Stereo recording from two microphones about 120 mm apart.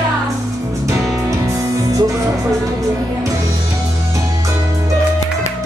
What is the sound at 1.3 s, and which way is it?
Music, 25° right (ahead or behind).